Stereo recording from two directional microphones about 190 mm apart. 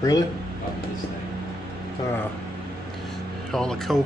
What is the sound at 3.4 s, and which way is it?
Speech, 5° left (ahead or behind).